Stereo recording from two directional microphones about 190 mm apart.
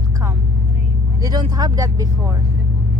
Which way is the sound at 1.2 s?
20° right (ahead or behind).